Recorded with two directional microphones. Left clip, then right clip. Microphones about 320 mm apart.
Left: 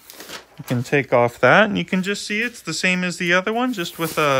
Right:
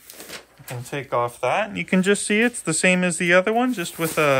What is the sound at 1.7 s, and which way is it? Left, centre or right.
Speech, centre.